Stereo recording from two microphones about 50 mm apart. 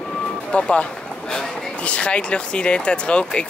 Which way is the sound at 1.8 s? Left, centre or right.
Left.